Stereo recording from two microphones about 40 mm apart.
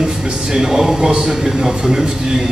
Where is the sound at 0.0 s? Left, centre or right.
Centre.